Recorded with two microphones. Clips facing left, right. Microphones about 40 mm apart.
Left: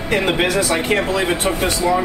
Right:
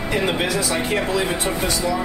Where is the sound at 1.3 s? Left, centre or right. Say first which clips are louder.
Left 4 dB; left.